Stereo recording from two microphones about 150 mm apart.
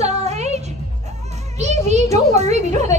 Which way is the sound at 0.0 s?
45° right (ahead or behind).